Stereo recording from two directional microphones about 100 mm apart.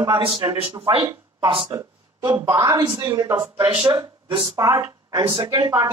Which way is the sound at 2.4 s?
35° right (ahead or behind).